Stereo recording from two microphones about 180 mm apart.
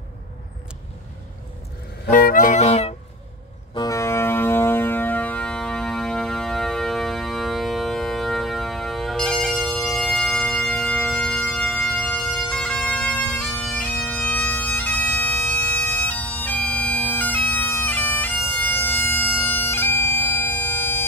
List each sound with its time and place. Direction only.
2.0 s music: 50° left (ahead or behind)
3.7 s music: 20° left (ahead or behind)